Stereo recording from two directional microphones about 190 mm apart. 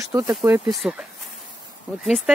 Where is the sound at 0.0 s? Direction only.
15° right (ahead or behind).